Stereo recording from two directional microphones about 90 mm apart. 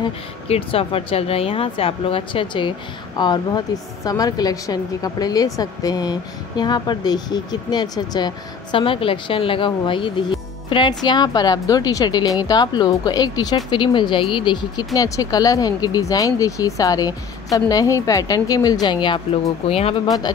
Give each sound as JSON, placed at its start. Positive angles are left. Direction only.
{"t": 0.0, "sound": "speech", "side_deg": 90}
{"t": 3.2, "sound": "speech", "side_deg": 55}
{"t": 4.0, "sound": "speech", "side_deg": 45}
{"t": 8.7, "sound": "speech", "side_deg": 75}
{"t": 13.7, "sound": "speech", "side_deg": 60}
{"t": 15.0, "sound": "speech", "side_deg": 40}
{"t": 20.1, "sound": "speech", "side_deg": 50}